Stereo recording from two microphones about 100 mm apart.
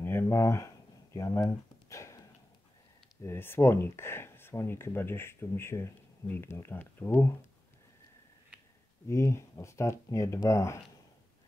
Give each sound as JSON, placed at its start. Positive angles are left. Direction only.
{"t": 0.0, "sound": "a sound", "side_deg": 25}
{"t": 3.2, "sound": "speech", "side_deg": 25}
{"t": 9.0, "sound": "speech", "side_deg": 30}